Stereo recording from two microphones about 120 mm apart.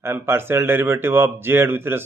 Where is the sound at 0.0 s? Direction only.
20° right (ahead or behind).